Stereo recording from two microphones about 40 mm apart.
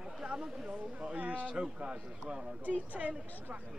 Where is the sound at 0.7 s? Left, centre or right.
Right.